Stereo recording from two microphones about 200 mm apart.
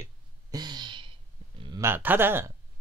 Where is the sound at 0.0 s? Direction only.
20° right (ahead or behind).